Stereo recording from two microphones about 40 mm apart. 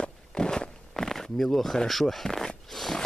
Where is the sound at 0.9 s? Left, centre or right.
Centre.